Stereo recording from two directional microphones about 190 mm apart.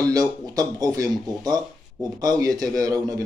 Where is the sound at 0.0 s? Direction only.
20° right (ahead or behind).